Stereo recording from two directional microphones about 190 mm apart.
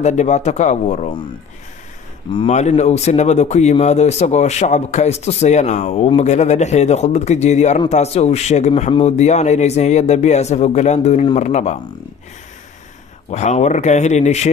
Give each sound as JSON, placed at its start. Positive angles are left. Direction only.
{"t": 0.0, "sound": "a man's voice", "side_deg": 40}
{"t": 2.3, "sound": "a man's voice", "side_deg": 35}
{"t": 13.3, "sound": "a man's voice", "side_deg": 35}